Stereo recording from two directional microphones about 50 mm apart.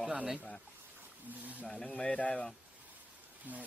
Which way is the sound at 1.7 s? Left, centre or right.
Left.